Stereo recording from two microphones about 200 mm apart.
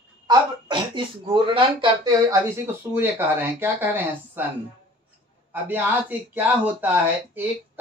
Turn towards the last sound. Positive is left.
turn(degrees=-10)  # may be behind; listen again after turning